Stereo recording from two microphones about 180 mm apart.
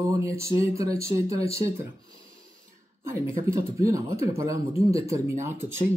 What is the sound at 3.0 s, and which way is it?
Speech, 15° right (ahead or behind).